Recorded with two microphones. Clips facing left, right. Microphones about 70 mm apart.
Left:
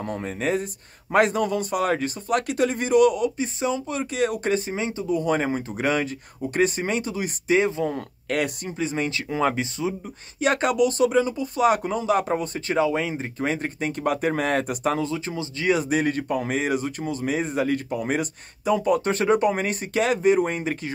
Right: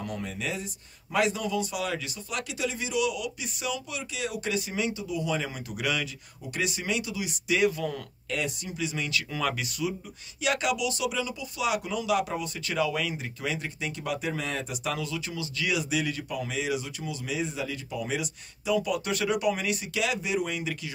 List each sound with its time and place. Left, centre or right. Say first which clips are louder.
0.0 s speech: left 7 dB; left
8.3 s speech: left 6 dB; left
8.7 s speech: left 5 dB; left
10.4 s speech: left 7 dB; left